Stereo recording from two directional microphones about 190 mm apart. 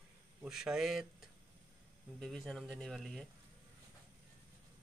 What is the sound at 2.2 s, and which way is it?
Speech, centre (ahead or behind).